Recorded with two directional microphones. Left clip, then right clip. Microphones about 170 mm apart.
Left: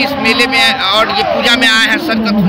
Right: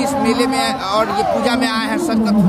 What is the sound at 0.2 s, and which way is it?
A man's voice, 25° right (ahead or behind).